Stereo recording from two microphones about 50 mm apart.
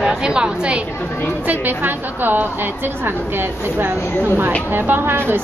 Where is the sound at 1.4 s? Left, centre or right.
Right.